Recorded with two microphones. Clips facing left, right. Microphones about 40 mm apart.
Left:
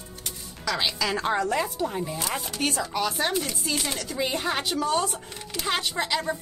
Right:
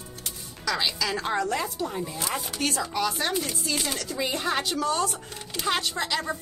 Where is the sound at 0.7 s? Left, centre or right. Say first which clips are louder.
Left 1 dB; centre.